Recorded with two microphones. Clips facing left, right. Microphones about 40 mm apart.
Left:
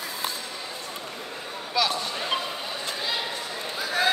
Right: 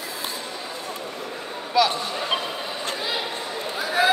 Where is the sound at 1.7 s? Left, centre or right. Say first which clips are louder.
Right 5 dB; centre.